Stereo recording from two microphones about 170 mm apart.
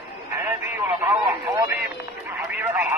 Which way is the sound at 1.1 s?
20° right (ahead or behind).